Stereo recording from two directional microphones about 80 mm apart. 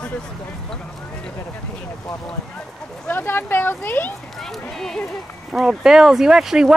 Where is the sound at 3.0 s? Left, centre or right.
Left.